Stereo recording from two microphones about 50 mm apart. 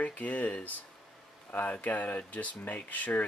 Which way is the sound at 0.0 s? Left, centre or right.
Left.